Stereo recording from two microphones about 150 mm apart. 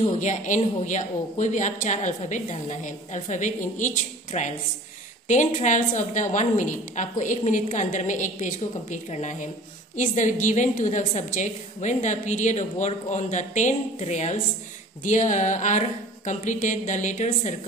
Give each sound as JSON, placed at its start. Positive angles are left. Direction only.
{"t": 0.2, "sound": "a woman's voice", "side_deg": 55}